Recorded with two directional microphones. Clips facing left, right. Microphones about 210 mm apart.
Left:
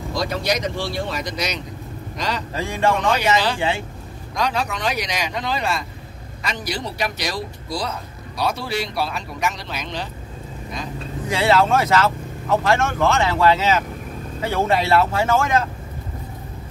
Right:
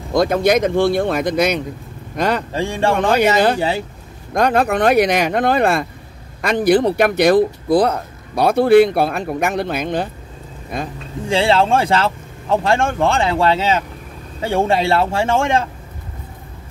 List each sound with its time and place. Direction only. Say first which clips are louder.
0.1 s speech: right 9 dB; 50° right (ahead or behind)
2.5 s speech: right 3 dB; 30° right (ahead or behind)
3.0 s speech: right 6 dB; 55° right (ahead or behind)
3.5 s speech: right 4 dB; 40° right (ahead or behind)
4.3 s speech: right 8 dB; 55° right (ahead or behind)
11.2 s speech: right 3 dB; 30° right (ahead or behind)